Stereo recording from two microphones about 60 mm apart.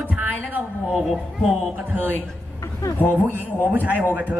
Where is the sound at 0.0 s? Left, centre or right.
Right.